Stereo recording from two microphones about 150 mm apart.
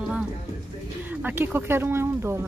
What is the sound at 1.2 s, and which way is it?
Speech, 15° right (ahead or behind).